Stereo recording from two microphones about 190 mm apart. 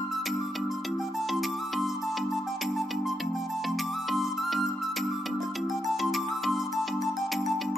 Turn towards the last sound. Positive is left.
turn(degrees=0)  # may be behind; listen again after turning